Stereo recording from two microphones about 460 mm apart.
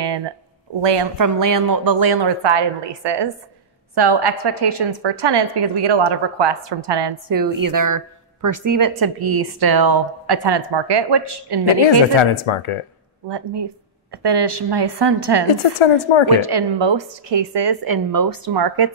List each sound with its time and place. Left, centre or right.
0.0 s a sound: right
0.8 s a woman's voice: right
1.2 s a woman's voice: right
7.2 s a woman's voice: right
12.2 s speech: left
13.3 s a woman's voice: right
15.8 s a woman's voice: left
16.3 s a woman's voice: right